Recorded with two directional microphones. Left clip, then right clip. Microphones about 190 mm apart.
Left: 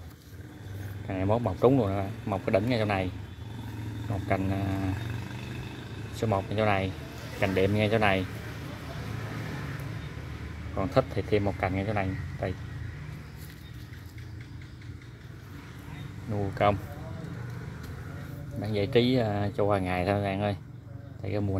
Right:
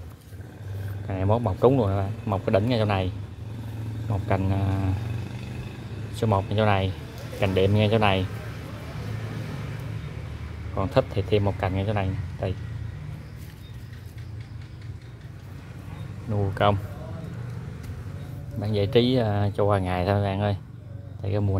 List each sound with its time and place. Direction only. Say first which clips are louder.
1.0 s speech: right 3 dB; 5° right (ahead or behind)
4.1 s speech: right 2 dB; 15° right (ahead or behind)
6.1 s speech: right 4 dB; 15° right (ahead or behind)
10.7 s speech: right 3 dB; 10° right (ahead or behind)
16.3 s speech: right 3 dB; 15° right (ahead or behind)
18.6 s speech: right 3 dB; 10° right (ahead or behind)